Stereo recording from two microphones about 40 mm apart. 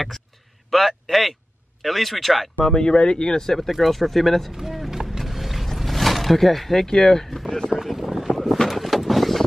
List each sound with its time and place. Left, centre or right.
0.7 s a man's voice: centre
2.7 s speech: centre
4.6 s run: centre
5.2 s boat: centre
5.8 s a sound: centre
6.9 s speech: centre
7.8 s boat: centre
8.6 s vehicle: centre